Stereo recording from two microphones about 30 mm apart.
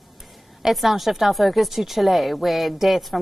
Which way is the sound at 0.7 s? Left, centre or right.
Centre.